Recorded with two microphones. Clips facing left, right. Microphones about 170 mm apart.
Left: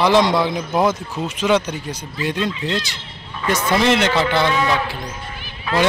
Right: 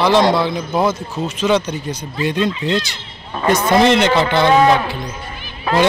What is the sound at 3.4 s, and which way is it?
A man's voice, 40° right (ahead or behind).